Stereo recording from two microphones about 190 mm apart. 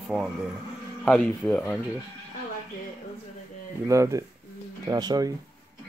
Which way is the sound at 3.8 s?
15° right (ahead or behind).